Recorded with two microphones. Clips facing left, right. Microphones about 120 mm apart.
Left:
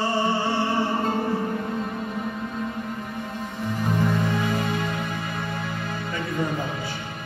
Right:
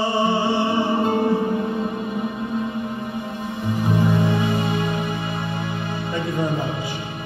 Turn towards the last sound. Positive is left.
turn(degrees=-15)  # may be behind; listen again after turning